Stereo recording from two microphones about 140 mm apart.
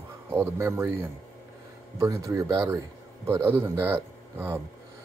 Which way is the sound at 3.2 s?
15° right (ahead or behind).